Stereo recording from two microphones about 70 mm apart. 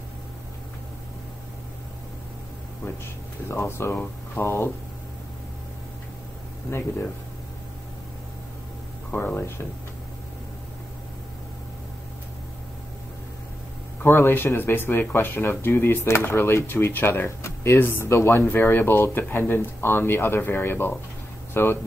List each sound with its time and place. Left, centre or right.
3.4 s speech: left
9.1 s speech: left
14.0 s speech: left